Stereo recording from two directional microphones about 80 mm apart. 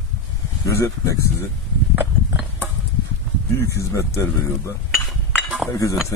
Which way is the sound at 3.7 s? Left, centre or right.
Left.